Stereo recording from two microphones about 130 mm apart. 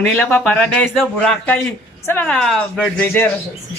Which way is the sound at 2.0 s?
15° left (ahead or behind).